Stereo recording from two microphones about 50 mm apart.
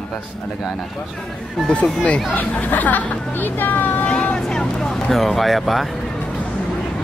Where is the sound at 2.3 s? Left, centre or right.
Left.